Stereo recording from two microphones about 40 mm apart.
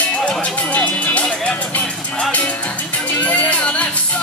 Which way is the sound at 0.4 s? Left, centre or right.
Left.